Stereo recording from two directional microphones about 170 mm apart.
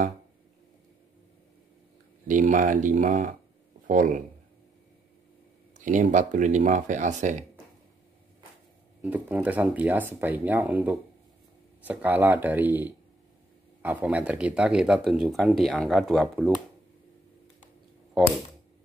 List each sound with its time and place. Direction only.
2.2 s speech: 50° right (ahead or behind)
5.8 s speech: 45° right (ahead or behind)
9.0 s speech: 10° right (ahead or behind)